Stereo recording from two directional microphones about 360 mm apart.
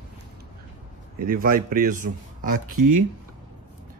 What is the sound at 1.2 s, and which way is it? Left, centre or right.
Speech, right.